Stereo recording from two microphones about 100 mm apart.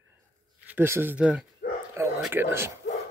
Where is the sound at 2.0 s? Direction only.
25° right (ahead or behind).